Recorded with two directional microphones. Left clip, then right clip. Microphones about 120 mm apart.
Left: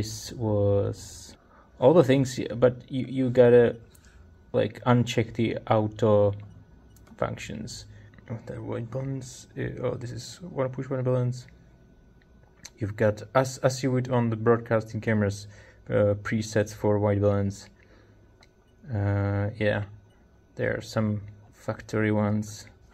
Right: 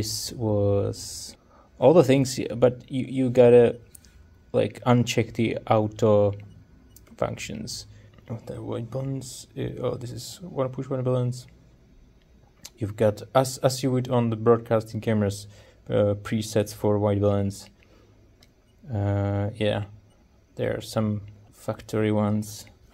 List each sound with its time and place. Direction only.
0.0 s speech: 25° right (ahead or behind)
12.6 s speech: 20° right (ahead or behind)
18.9 s speech: 20° right (ahead or behind)